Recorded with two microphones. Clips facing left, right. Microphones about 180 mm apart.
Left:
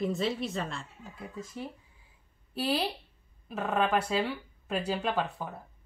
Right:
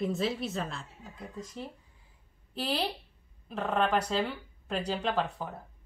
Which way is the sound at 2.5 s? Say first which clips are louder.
Left 2 dB; 5° left (ahead or behind).